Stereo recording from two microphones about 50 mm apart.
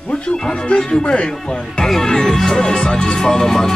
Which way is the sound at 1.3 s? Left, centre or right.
Centre.